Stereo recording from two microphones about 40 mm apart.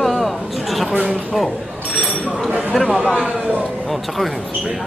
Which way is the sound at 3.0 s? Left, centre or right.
Centre.